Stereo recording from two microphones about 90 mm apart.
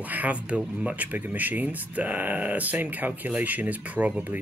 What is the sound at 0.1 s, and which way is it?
Speech, 15° right (ahead or behind).